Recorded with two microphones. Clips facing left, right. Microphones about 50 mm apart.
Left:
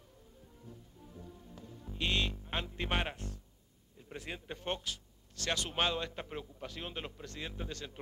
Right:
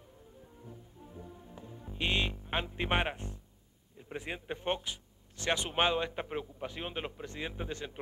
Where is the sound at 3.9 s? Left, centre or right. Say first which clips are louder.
Right 4 dB; right.